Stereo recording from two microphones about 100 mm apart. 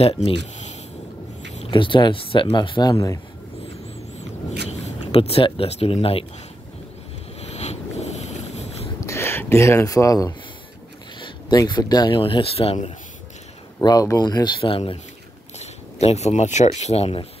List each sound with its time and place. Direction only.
0.0 s speech: 70° left (ahead or behind)
1.7 s speech: 55° left (ahead or behind)
2.9 s speech: 35° left (ahead or behind)
4.2 s speech: 90° left; by 6.2 s 70° left (ahead or behind)
7.4 s a sound: 90° left
9.0 s speech: 25° left (ahead or behind)
11.1 s a sound: 55° left (ahead or behind)
11.5 s speech: 45° left (ahead or behind)
12.2 s speech: 65° left (ahead or behind)
13.7 s speech: 40° left (ahead or behind)
14.6 s speech: 65° left (ahead or behind)
15.6 s a sound: 90° left
16.8 s speech: 90° left